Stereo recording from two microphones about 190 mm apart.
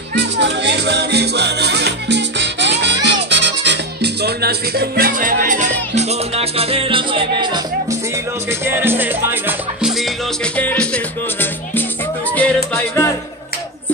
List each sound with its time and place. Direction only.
0.1 s music: 65° right (ahead or behind); by 7.6 s 25° right (ahead or behind)
8.5 s speech: 10° right (ahead or behind); by 10.9 s 10° left (ahead or behind)
12.4 s music: 5° left (ahead or behind)